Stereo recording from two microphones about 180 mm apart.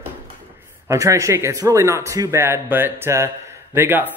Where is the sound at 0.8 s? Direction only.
15° right (ahead or behind).